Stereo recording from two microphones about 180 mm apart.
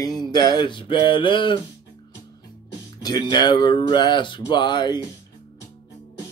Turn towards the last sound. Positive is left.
turn(degrees=25)  # may be behind; listen again after turning